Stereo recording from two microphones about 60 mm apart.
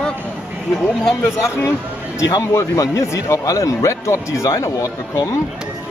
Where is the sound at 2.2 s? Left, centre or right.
Left.